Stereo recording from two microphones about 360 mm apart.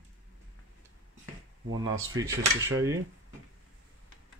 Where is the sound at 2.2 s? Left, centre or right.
Centre.